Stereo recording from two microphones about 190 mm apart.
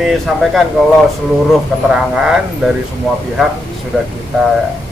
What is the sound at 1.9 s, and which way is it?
Speech, 5° right (ahead or behind).